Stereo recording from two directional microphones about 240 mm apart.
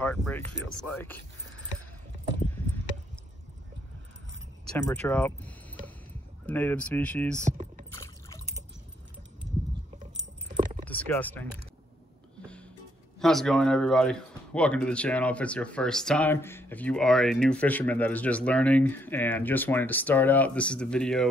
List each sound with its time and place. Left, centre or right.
0.0 s speech: centre
4.6 s speech: centre
7.4 s typing: right
7.9 s liquid: centre
10.6 s keys jangling: right
10.9 s speech: centre
13.2 s speech: centre